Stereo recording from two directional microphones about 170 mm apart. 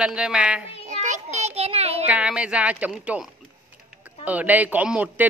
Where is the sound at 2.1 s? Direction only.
5° right (ahead or behind).